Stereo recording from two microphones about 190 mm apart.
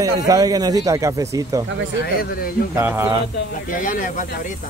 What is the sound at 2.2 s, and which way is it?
Speech, 50° left (ahead or behind).